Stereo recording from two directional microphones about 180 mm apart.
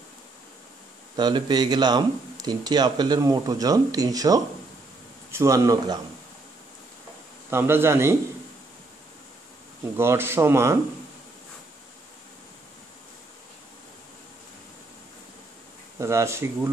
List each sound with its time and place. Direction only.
1.1 s speech: 25° right (ahead or behind)
7.5 s speech: 15° right (ahead or behind)
9.9 s speech: 15° right (ahead or behind)
16.0 s speech: 15° right (ahead or behind)